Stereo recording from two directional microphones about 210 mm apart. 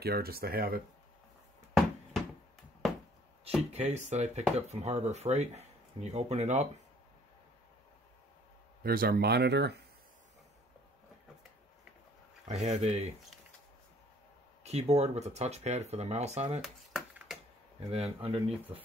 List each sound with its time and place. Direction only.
0.0 s speech: 45° right (ahead or behind)
1.7 s a sound: centre (ahead or behind)
3.7 s speech: 30° right (ahead or behind)
8.8 s speech: 45° right (ahead or behind)
12.4 s speech: 35° right (ahead or behind)
14.6 s speech: 30° right (ahead or behind)
16.6 s a sound: centre (ahead or behind)
17.7 s speech: 30° right (ahead or behind)